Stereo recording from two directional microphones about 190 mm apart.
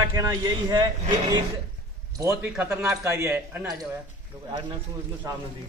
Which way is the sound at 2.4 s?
5° right (ahead or behind).